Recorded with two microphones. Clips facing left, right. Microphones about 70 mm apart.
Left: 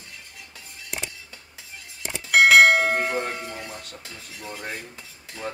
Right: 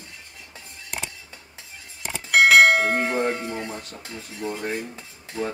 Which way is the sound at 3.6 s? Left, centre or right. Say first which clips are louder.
Right 5 dB; right.